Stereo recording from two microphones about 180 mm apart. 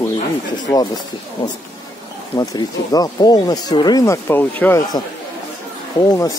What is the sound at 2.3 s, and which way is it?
Speech, 20° left (ahead or behind).